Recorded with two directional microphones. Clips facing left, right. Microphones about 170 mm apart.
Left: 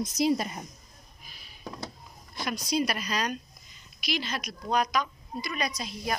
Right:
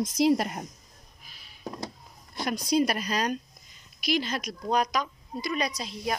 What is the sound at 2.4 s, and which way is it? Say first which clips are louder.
A woman's voice: right 4 dB; 40° right (ahead or behind).